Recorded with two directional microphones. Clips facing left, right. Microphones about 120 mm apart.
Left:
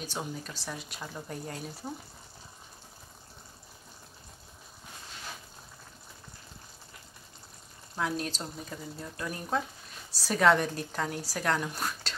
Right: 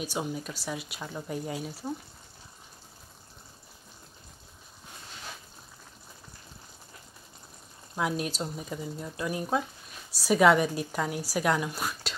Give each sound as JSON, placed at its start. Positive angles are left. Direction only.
{"t": 0.0, "sound": "a woman's voice", "side_deg": -10}
{"t": 7.9, "sound": "a woman's voice", "side_deg": -10}